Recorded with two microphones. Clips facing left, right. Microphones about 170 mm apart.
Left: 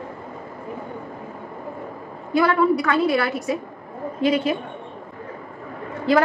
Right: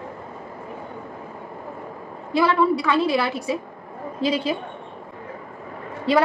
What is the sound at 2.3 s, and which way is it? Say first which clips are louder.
A woman's voice: left 1 dB; 30° right (ahead or behind).